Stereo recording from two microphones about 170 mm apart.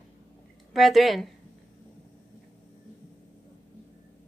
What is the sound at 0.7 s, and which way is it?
Speech, centre (ahead or behind).